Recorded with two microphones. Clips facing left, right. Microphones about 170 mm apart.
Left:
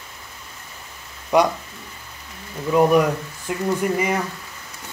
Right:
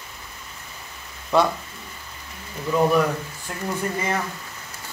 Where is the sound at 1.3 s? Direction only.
15° left (ahead or behind).